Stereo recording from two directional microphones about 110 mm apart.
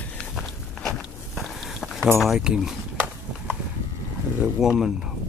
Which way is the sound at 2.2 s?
5° right (ahead or behind).